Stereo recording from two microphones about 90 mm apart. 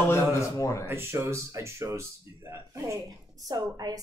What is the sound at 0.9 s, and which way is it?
Speech, 25° right (ahead or behind).